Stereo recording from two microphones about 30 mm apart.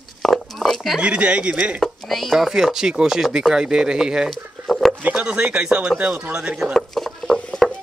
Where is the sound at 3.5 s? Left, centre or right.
Right.